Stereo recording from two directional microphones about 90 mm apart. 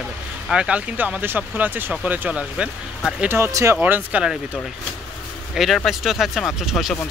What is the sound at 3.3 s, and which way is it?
Speech, 25° right (ahead or behind).